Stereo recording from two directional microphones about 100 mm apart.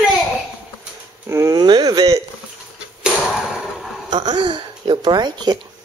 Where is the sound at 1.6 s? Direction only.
45° right (ahead or behind).